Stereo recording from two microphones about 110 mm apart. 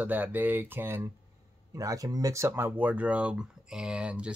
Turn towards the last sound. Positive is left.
turn(degrees=-10)  # may be behind; listen again after turning